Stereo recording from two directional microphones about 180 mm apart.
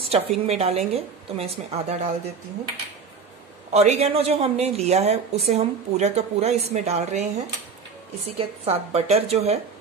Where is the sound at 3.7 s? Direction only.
35° right (ahead or behind).